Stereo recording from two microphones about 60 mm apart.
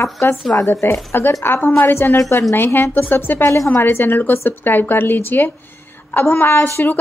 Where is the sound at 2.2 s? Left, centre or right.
Left.